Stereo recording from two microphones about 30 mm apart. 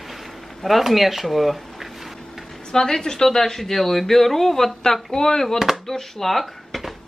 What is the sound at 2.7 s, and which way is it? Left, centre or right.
Speech, left.